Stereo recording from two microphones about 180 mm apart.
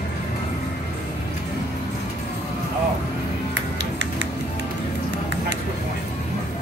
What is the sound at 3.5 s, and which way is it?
Music, 90° right.